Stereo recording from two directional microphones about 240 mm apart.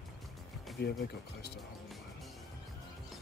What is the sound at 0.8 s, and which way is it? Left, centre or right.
Speech, left.